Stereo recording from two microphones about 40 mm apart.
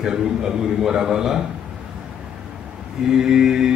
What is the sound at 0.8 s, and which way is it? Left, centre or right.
Speech, centre.